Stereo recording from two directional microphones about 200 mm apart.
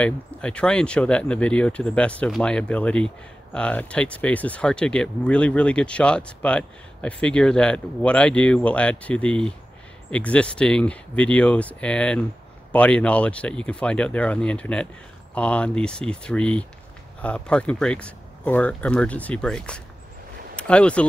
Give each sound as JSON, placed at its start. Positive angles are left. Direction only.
{"t": 0.0, "sound": "speech", "side_deg": 5}